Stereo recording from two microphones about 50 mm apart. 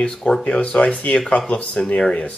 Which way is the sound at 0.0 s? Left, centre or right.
Left.